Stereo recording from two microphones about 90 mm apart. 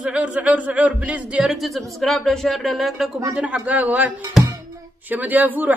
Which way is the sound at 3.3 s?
15° right (ahead or behind).